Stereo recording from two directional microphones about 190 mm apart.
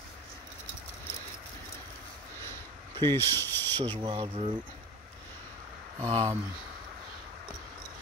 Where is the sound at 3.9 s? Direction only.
25° right (ahead or behind).